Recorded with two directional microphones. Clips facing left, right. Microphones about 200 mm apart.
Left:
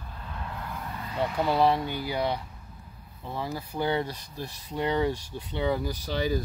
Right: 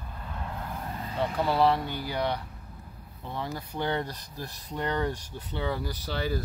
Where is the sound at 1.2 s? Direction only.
15° left (ahead or behind).